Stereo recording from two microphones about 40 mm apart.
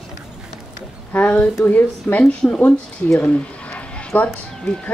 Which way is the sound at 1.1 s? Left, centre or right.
Left.